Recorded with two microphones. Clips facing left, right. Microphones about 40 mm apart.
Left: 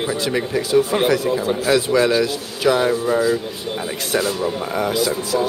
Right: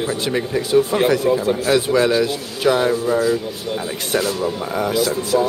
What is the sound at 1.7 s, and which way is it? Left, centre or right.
A man's voice, centre.